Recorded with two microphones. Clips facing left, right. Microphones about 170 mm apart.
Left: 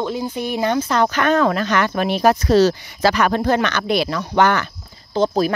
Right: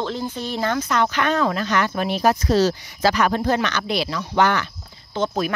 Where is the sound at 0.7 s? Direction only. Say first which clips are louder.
Left 3 dB; 30° left (ahead or behind).